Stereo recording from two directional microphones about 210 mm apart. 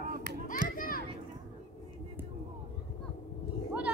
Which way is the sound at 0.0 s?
45° right (ahead or behind).